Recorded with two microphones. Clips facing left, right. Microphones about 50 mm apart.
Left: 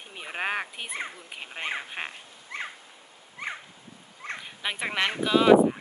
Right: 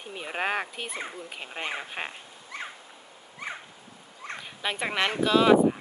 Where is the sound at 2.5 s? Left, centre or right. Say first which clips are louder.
Left 2 dB; left.